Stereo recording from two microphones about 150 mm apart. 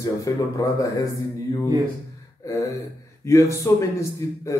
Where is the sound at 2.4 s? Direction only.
20° left (ahead or behind).